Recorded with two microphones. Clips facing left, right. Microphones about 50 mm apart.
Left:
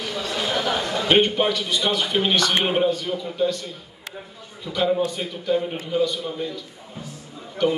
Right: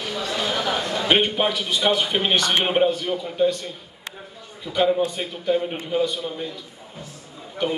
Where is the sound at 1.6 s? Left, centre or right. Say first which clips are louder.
Right 2 dB; centre.